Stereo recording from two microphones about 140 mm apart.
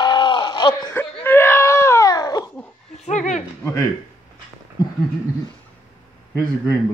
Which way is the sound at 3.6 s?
20° left (ahead or behind).